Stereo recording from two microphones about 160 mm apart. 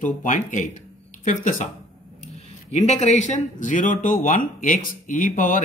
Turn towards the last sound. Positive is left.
turn(degrees=55)  # may be behind; listen again after turning